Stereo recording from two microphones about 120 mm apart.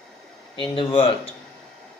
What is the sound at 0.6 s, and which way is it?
Speech, 45° left (ahead or behind).